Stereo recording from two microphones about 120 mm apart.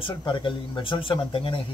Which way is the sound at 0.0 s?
45° left (ahead or behind).